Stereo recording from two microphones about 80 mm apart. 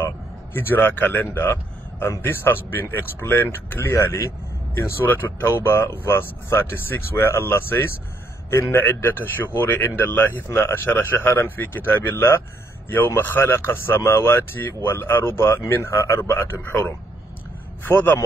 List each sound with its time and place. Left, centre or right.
0.0 s speech: left
17.8 s speech: left